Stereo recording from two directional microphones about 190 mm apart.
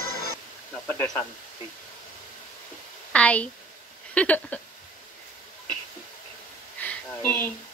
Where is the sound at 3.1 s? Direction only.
5° left (ahead or behind).